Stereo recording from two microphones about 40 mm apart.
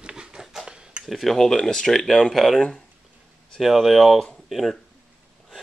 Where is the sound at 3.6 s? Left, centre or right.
Centre.